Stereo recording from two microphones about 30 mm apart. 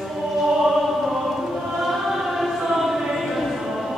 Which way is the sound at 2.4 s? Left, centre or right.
Centre.